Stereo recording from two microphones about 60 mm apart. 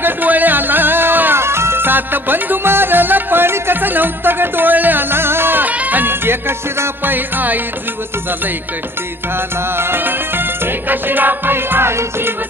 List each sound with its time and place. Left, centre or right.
0.0 s music: right
9.8 s music: right